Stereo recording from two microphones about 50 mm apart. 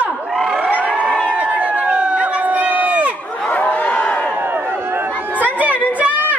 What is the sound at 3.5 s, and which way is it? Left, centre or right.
Crowd, left.